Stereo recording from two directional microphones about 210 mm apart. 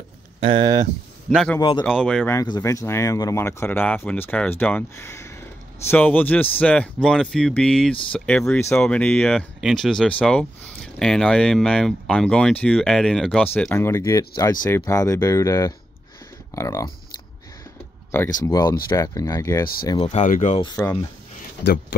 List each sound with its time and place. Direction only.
0.4 s speech: 25° right (ahead or behind)
1.3 s speech: centre (ahead or behind)
1.6 s speech: 20° left (ahead or behind)
1.9 s speech: 5° left (ahead or behind)
2.3 s speech: 15° left (ahead or behind)
18.4 s speech: 15° left (ahead or behind)
20.1 s speech: 35° left (ahead or behind)
20.6 s speech: 15° left (ahead or behind)